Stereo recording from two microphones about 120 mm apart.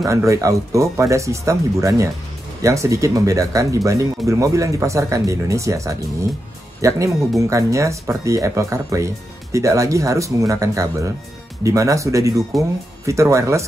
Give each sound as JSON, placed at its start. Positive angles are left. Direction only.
{"t": 0.0, "sound": "speech", "side_deg": -25}